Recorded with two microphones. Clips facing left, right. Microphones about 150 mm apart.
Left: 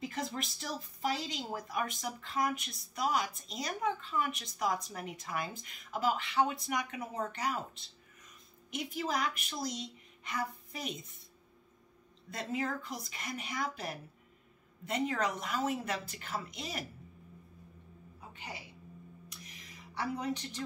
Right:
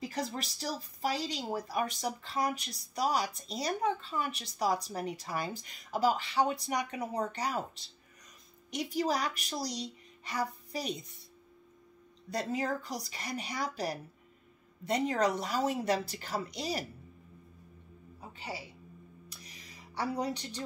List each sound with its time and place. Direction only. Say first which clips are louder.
0.0 s a woman's voice: right 2 dB; 35° right (ahead or behind)
12.3 s speech: right 3 dB; 35° right (ahead or behind)
18.3 s speech: right 5 dB; 30° right (ahead or behind)
19.2 s a sound: even; 35° right (ahead or behind)